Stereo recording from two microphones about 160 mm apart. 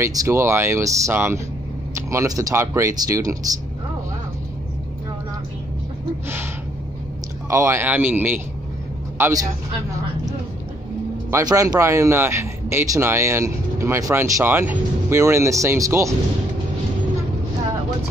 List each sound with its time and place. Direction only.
0.0 s speech: 20° right (ahead or behind)
7.4 s speech: 15° right (ahead or behind)